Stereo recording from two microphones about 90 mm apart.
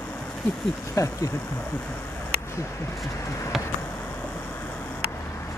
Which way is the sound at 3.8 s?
25° left (ahead or behind).